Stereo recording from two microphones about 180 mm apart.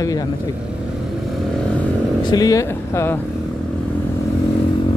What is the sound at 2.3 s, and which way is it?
Speech, 20° left (ahead or behind).